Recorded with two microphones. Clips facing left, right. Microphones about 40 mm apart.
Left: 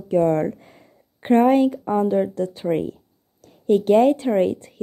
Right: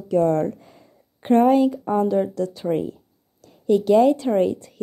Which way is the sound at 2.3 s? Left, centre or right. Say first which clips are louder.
Left 1 dB; left.